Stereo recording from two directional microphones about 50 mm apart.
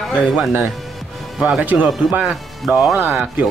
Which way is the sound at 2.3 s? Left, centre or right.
Centre.